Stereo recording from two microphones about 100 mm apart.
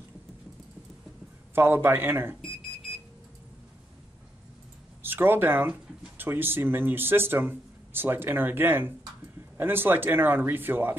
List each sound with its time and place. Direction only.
1.5 s speech: 20° right (ahead or behind)
2.4 s alarm clock: centre (ahead or behind)
5.0 s speech: 20° right (ahead or behind)